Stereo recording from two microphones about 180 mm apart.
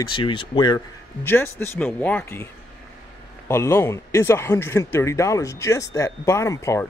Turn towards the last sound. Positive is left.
turn(degrees=15)  # may be behind; listen again after turning